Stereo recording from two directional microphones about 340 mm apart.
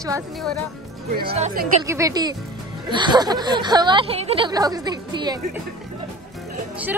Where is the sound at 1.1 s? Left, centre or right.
Right.